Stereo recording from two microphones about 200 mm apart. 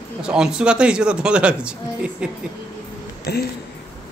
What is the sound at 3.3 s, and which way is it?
Speech, 55° left (ahead or behind).